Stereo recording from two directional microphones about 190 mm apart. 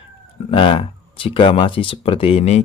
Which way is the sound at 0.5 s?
25° left (ahead or behind).